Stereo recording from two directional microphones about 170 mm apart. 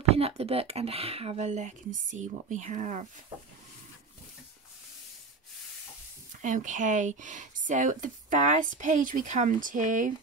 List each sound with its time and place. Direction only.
0.1 s speech: 35° right (ahead or behind)
6.4 s speech: 45° right (ahead or behind)